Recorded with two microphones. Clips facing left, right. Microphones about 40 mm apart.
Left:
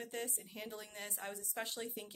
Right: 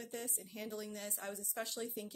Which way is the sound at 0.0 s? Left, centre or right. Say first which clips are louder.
Left 2 dB; left.